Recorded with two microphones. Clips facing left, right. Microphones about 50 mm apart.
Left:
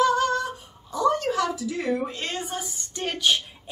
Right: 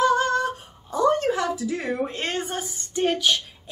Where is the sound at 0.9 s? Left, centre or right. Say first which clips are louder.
Right 2 dB; right.